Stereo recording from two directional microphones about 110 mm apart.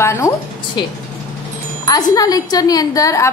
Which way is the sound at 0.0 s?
25° left (ahead or behind).